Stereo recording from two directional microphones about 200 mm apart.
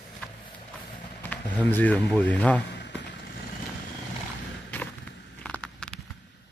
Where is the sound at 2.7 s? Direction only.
60° left (ahead or behind).